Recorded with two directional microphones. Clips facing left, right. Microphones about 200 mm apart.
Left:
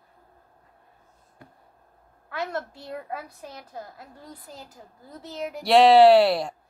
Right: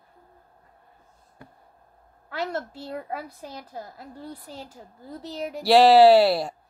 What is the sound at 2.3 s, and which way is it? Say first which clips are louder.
A woman's voice: right 1 dB; 30° right (ahead or behind).